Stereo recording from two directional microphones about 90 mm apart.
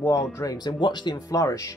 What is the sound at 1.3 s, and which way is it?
Speech, 40° left (ahead or behind).